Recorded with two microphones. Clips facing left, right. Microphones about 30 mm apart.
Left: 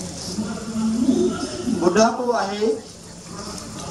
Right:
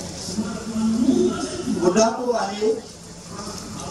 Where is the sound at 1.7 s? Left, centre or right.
Centre.